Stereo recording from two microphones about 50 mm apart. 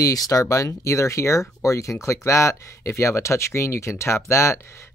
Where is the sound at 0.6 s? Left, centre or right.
Left.